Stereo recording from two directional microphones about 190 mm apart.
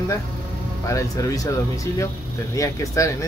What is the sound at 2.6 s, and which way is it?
Speech, 15° left (ahead or behind).